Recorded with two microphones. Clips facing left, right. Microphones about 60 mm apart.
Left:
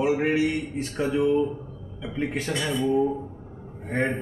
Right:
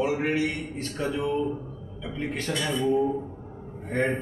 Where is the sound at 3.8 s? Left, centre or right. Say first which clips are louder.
Even; centre.